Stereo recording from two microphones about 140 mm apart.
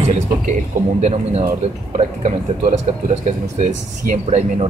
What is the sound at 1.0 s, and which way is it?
A man's voice, 55° right (ahead or behind).